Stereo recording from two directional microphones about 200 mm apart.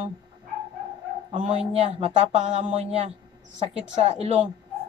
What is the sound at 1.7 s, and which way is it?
A woman's voice, 30° right (ahead or behind).